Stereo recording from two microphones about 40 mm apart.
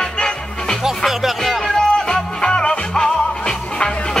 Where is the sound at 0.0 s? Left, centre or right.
Centre.